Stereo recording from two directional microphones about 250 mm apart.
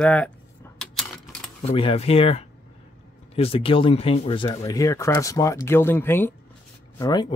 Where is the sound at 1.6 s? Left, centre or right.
Left.